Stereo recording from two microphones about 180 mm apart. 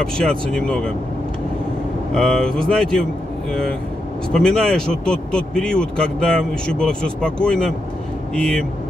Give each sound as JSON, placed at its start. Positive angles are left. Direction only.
{"t": 0.0, "sound": "a man's voice", "side_deg": 5}
{"t": 2.1, "sound": "a man's voice", "side_deg": 5}
{"t": 4.3, "sound": "a man's voice", "side_deg": 5}